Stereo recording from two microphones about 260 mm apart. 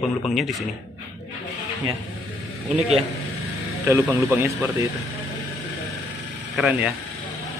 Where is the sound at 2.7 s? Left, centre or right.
Right.